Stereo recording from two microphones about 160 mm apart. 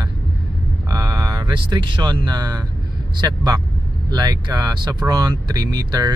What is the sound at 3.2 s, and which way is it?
Speech, 25° right (ahead or behind).